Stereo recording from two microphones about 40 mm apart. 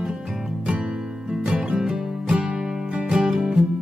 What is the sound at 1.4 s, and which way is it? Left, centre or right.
Music, right.